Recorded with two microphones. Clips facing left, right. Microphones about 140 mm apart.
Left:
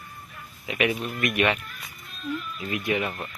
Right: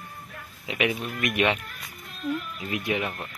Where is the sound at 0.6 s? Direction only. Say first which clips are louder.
Left 1 dB; 20° right (ahead or behind).